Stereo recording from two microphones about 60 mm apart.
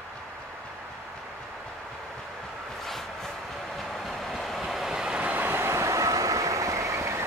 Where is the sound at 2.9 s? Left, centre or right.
Centre.